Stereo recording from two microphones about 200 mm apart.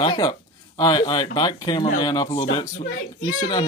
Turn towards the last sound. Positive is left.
turn(degrees=20)  # may be behind; listen again after turning